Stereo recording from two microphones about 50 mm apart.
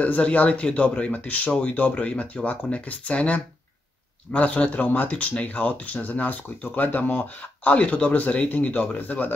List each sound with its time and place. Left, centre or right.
0.0 s speech: left
5.1 s speech: left
7.7 s speech: left